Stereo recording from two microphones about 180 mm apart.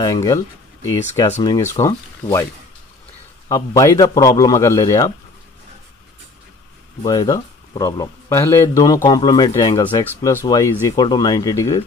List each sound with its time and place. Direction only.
0.0 s a man's voice: 20° left (ahead or behind)
3.4 s a man's voice: 20° left (ahead or behind)
7.0 s a man's voice: 20° left (ahead or behind)